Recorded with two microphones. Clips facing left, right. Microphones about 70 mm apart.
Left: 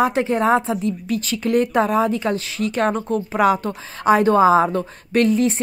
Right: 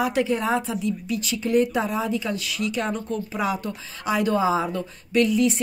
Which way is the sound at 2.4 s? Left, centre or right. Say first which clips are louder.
Left 6 dB; left.